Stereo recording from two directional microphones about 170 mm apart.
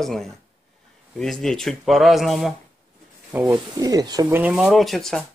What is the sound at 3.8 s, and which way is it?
Speech, 20° right (ahead or behind).